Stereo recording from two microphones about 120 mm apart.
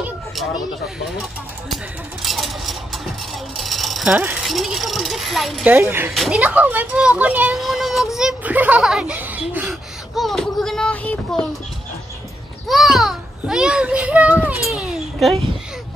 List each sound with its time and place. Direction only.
2.2 s a sound: centre (ahead or behind)
3.5 s speech: centre (ahead or behind)
4.5 s speech: centre (ahead or behind)
5.7 s a woman's voice: 20° right (ahead or behind)
6.1 s speech: centre (ahead or behind)
6.4 s a woman's voice: 15° right (ahead or behind)
7.6 s a sound: centre (ahead or behind)
9.5 s a woman's voice: 15° right (ahead or behind)
10.1 s speech: centre (ahead or behind)
12.6 s a child's voice: centre (ahead or behind)
14.6 s a sound: centre (ahead or behind)